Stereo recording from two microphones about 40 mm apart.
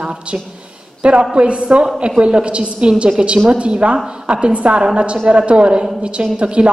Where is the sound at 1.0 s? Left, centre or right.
Right.